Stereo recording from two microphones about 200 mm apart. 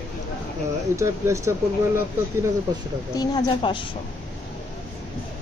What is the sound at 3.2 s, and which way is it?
Speech, 20° left (ahead or behind).